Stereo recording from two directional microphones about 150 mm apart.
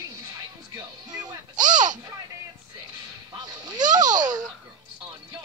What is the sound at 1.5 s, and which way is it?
Speech, 55° right (ahead or behind).